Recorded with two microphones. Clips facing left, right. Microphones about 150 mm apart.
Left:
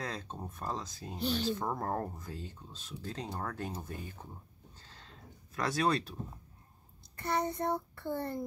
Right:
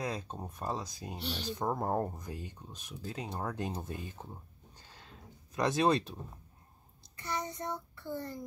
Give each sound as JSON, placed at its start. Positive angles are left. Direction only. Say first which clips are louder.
{"t": 0.0, "sound": "speech", "louder": "right 3 dB", "side_deg": -10}
{"t": 4.7, "sound": "a sound", "louder": "right 2 dB", "side_deg": -10}
{"t": 5.6, "sound": "speech", "louder": "right 3 dB", "side_deg": -20}
{"t": 7.2, "sound": "child singing", "louder": "left 5 dB", "side_deg": 60}